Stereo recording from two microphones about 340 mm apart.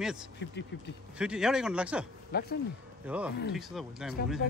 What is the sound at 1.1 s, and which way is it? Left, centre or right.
Speech, centre.